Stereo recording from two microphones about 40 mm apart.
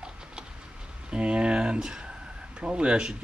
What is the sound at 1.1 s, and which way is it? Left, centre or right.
Speech, right.